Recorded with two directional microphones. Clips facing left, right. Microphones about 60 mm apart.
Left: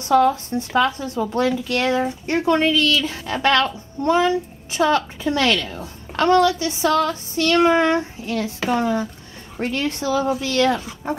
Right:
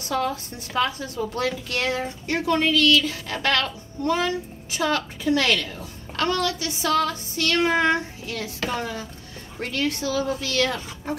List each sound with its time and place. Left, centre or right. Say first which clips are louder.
0.1 s a woman's voice: left 10 dB; left